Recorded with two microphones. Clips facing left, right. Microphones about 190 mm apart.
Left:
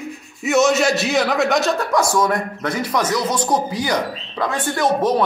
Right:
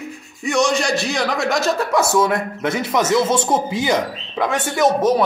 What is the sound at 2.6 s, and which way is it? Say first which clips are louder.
Speech: right 2 dB; 25° right (ahead or behind).